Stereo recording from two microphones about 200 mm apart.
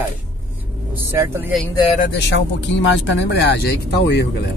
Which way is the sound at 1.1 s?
10° right (ahead or behind).